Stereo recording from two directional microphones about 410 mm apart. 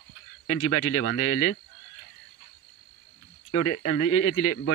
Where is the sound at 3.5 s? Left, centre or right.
Left.